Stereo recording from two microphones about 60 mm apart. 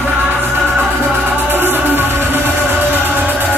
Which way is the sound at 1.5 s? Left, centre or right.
Right.